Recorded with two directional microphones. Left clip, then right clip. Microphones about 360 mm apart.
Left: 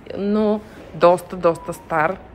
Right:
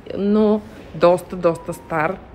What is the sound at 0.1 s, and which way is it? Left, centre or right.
A woman's voice, centre.